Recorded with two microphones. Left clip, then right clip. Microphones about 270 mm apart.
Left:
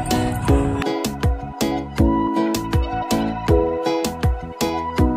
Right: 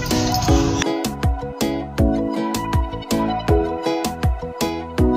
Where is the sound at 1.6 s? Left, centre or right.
Centre.